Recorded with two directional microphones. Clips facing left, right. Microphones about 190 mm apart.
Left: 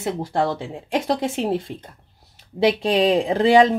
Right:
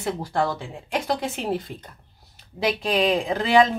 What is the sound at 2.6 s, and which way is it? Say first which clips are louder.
Speech: left 5 dB; 30° left (ahead or behind).